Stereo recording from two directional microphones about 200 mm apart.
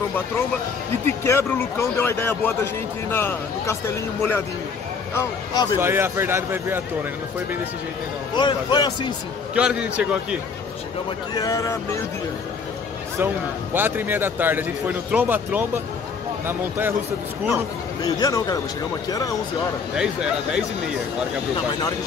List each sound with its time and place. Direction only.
1.0 s a man's voice: 15° left (ahead or behind)
5.8 s speech: 10° right (ahead or behind)
8.4 s a man's voice: 20° left (ahead or behind)
9.6 s speech: 5° right (ahead or behind)
11.3 s speech: 15° left (ahead or behind)
13.7 s speech: 10° right (ahead or behind)
18.0 s speech: 20° left (ahead or behind)
20.0 s speech: 5° right (ahead or behind)